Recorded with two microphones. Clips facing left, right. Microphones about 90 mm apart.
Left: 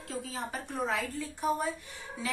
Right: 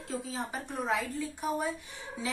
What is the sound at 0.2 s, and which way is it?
Speech, 15° right (ahead or behind).